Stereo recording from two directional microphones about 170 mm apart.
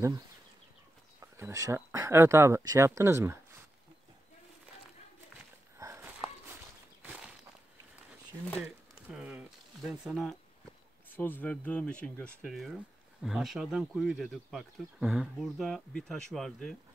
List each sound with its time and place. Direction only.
1.2 s speech: 15° right (ahead or behind)
5.8 s walk: 15° right (ahead or behind)
9.1 s a sound: 5° right (ahead or behind)
9.8 s speech: centre (ahead or behind)
11.1 s speech: 10° left (ahead or behind)